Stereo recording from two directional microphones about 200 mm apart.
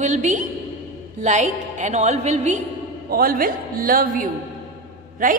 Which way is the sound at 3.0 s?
45° right (ahead or behind).